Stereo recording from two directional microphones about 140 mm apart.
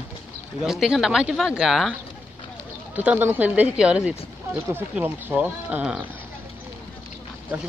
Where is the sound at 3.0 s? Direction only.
10° right (ahead or behind).